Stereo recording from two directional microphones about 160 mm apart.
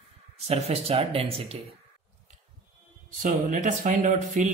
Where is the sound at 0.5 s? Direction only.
40° right (ahead or behind).